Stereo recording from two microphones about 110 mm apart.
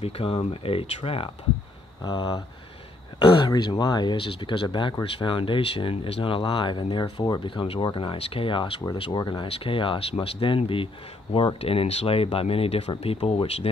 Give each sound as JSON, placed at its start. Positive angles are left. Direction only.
{"t": 0.0, "sound": "speech", "side_deg": 55}
{"t": 9.2, "sound": "speech", "side_deg": 45}
{"t": 9.5, "sound": "speech", "side_deg": 55}